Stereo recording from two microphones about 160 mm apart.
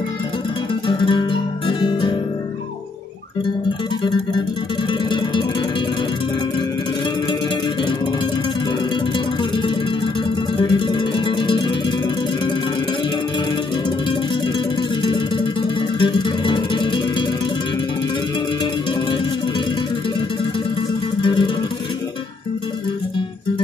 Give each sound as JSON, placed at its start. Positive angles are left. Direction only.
{"t": 0.8, "sound": "music", "side_deg": 30}
{"t": 10.6, "sound": "music", "side_deg": 30}
{"t": 14.8, "sound": "music", "side_deg": 30}
{"t": 21.2, "sound": "music", "side_deg": 30}